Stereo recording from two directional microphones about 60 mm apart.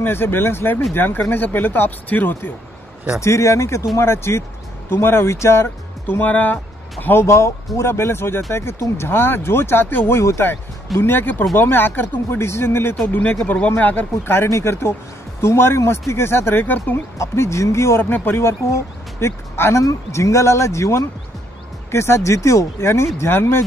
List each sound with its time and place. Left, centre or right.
0.0 s speech: left
3.2 s speech: left
6.0 s speech: left
7.2 s speech: left
11.0 s speech: left
13.5 s speech: left
17.2 s speech: left
19.8 s speech: left